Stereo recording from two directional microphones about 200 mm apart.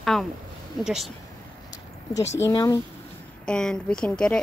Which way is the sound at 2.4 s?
15° left (ahead or behind).